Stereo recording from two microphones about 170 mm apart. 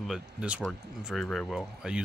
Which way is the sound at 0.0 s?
5° right (ahead or behind).